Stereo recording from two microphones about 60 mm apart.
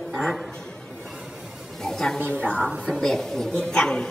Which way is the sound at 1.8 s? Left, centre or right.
Centre.